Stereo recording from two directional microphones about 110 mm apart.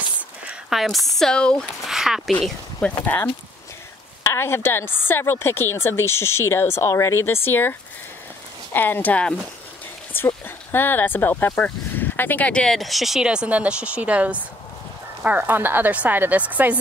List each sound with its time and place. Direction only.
0.5 s speech: 5° right (ahead or behind)
1.9 s speech: 5° right (ahead or behind)
2.8 s speech: 10° left (ahead or behind)
4.2 s a woman's voice: 25° left (ahead or behind)
8.7 s speech: 20° left (ahead or behind); by 16.7 s 15° right (ahead or behind)